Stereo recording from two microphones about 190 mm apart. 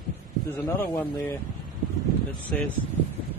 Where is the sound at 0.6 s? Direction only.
15° left (ahead or behind).